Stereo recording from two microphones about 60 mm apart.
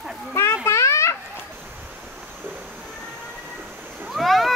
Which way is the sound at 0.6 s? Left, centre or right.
Left.